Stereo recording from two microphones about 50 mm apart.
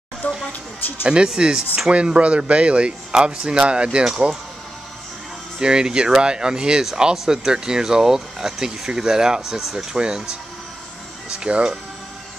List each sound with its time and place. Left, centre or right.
0.2 s speech: left
1.0 s speech: centre
5.6 s speech: centre
9.9 s speech: centre